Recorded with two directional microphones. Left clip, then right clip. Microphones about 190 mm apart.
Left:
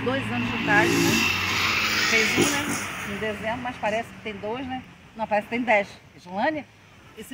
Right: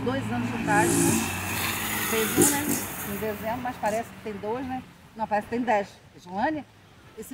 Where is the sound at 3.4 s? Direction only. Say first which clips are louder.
Right 1 dB; 15° left (ahead or behind).